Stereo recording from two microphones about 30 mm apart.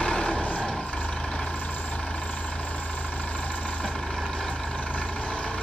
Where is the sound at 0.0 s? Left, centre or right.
Left.